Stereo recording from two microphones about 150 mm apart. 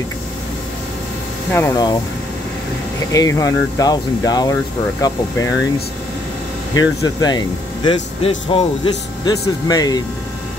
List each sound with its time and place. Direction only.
1.5 s speech: 20° left (ahead or behind)
3.1 s speech: 20° left (ahead or behind)
6.8 s speech: 25° left (ahead or behind)